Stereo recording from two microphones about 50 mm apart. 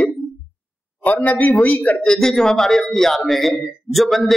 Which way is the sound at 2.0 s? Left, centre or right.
Centre.